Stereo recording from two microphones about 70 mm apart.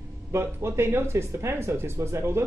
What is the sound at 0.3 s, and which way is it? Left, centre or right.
Speech, right.